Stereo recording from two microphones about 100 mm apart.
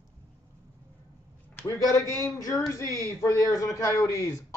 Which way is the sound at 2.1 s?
30° left (ahead or behind).